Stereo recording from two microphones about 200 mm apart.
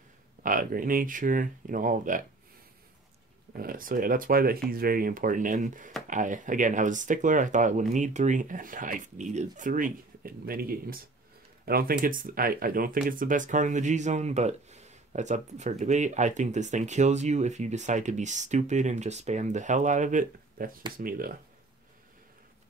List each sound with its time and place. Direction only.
0.4 s speech: 45° right (ahead or behind)
3.5 s speech: 45° right (ahead or behind)